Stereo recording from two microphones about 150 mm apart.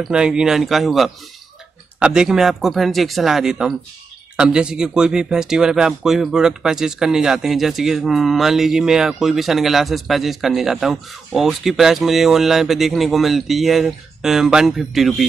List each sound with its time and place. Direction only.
0.0 s speech: 5° right (ahead or behind)